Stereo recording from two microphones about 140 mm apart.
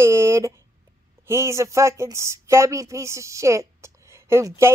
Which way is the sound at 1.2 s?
20° right (ahead or behind).